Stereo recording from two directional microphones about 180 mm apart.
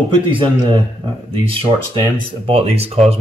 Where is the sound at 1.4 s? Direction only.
30° right (ahead or behind).